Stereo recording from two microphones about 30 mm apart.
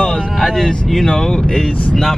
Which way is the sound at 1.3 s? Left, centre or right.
Left.